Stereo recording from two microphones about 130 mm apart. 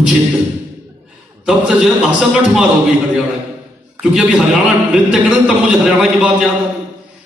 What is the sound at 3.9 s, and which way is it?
A man's voice, 10° right (ahead or behind).